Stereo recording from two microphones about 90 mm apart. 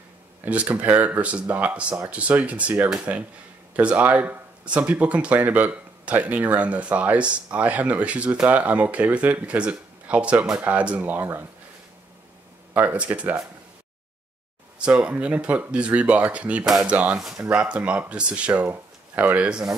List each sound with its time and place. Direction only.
0.5 s speech: 15° right (ahead or behind)
12.7 s speech: 15° right (ahead or behind)
14.8 s speech: 15° right (ahead or behind)